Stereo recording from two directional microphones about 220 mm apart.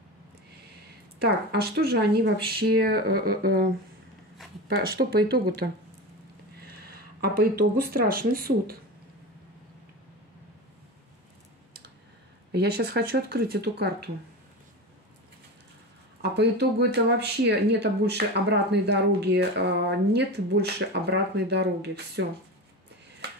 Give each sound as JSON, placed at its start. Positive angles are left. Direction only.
{"t": 1.2, "sound": "speech", "side_deg": -45}
{"t": 4.6, "sound": "speech", "side_deg": -45}
{"t": 6.7, "sound": "speech", "side_deg": -45}
{"t": 12.5, "sound": "speech", "side_deg": -45}
{"t": 16.2, "sound": "speech", "side_deg": -50}